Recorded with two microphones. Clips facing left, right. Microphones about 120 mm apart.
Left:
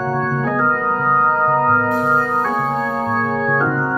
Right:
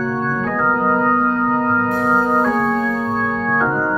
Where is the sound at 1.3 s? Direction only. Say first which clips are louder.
Left 2 dB; 45° left (ahead or behind).